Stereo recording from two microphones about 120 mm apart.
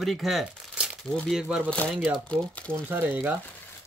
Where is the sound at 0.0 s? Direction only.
Centre (ahead or behind).